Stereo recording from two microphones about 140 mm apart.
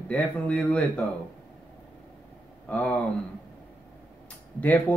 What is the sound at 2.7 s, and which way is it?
Speech, 10° left (ahead or behind).